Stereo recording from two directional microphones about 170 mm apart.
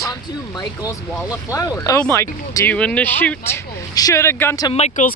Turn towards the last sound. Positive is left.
turn(degrees=45)  # may be behind; listen again after turning